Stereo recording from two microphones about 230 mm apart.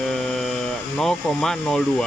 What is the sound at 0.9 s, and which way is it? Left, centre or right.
Speech, centre.